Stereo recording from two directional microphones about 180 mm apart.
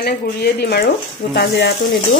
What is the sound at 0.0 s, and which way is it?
Speech, 60° left (ahead or behind).